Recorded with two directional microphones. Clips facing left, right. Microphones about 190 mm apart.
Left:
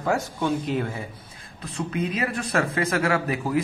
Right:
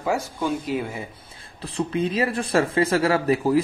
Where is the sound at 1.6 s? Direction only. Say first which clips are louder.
Right 4 dB; 30° right (ahead or behind).